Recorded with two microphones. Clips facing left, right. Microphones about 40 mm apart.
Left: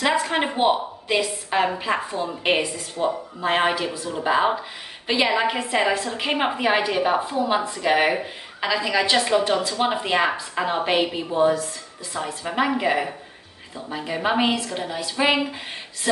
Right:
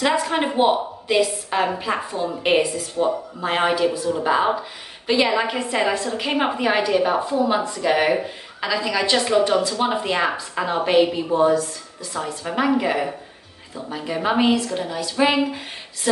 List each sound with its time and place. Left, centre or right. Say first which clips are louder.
0.0 s a woman's voice: right 1 dB; centre